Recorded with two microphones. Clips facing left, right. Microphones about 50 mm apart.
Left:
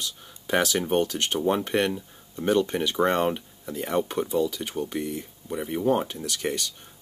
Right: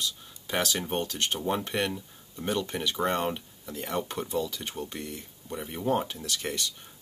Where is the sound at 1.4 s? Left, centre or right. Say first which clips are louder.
Left 7 dB; centre.